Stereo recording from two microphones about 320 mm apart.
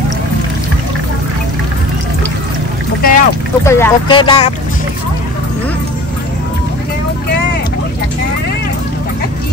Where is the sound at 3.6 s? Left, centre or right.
Centre.